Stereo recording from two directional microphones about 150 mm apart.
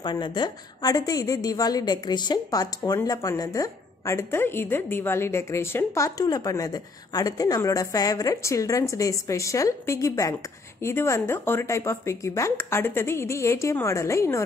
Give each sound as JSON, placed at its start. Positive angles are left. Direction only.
{"t": 0.0, "sound": "a woman's voice", "side_deg": 30}